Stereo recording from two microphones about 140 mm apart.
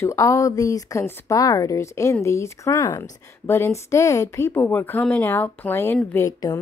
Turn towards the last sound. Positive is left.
turn(degrees=20)  # may be behind; listen again after turning